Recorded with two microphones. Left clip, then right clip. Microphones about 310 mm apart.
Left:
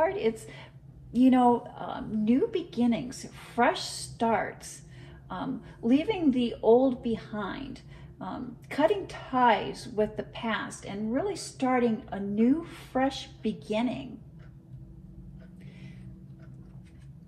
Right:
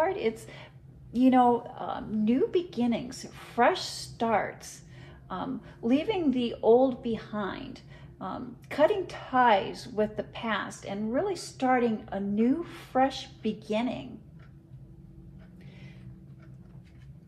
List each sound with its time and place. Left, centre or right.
0.0 s a woman's voice: right